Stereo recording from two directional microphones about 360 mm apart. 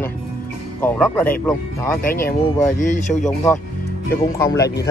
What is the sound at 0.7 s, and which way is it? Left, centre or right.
Speech, centre.